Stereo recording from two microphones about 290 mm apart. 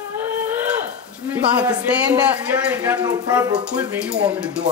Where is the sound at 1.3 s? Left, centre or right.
Centre.